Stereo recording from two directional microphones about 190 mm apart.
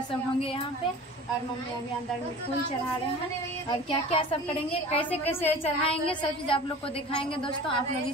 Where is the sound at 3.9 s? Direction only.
25° left (ahead or behind).